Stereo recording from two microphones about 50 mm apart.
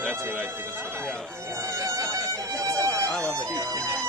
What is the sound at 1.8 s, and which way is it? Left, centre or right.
Music, right.